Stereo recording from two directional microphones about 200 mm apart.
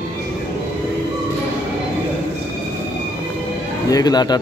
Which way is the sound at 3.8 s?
20° left (ahead or behind).